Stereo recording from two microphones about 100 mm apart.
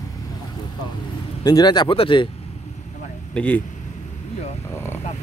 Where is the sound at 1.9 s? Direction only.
65° left (ahead or behind).